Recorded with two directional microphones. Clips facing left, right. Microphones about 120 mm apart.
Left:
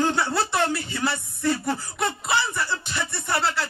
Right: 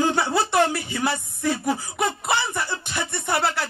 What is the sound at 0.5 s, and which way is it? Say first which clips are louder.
Speech: right 4 dB; 55° right (ahead or behind).